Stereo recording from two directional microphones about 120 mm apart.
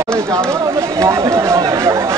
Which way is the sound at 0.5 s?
25° right (ahead or behind).